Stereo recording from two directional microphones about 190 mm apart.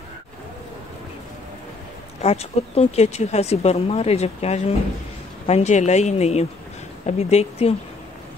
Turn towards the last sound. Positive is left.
turn(degrees=35)  # may be behind; listen again after turning